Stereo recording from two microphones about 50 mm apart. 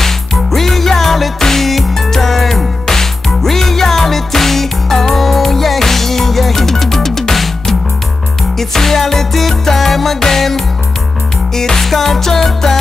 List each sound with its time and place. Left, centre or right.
0.0 s music: centre